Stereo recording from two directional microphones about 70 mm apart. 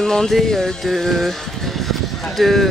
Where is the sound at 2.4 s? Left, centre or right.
Centre.